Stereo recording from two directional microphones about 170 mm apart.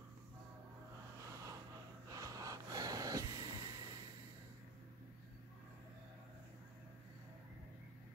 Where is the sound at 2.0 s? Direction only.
20° right (ahead or behind).